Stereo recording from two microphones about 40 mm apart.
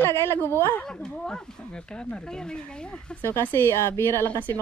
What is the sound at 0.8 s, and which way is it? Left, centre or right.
Speech, centre.